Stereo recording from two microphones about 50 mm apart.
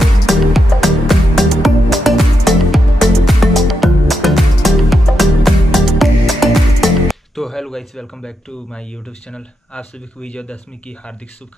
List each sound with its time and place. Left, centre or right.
0.0 s music: centre
9.3 s speech: left